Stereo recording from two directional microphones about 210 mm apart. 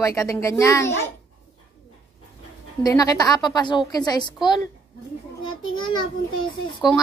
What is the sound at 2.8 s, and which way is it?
A woman's voice, 15° left (ahead or behind).